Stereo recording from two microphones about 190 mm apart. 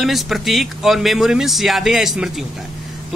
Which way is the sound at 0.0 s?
Centre (ahead or behind).